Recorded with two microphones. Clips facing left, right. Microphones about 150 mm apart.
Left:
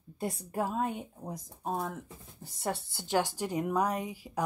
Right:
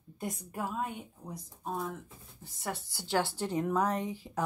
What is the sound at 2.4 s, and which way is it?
Speech, 30° left (ahead or behind).